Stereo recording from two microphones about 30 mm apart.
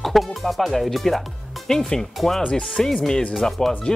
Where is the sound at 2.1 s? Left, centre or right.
Centre.